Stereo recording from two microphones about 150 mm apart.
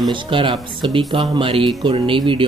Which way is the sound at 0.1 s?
35° right (ahead or behind).